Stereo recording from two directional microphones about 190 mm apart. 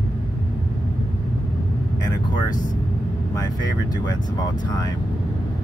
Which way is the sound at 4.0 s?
20° left (ahead or behind).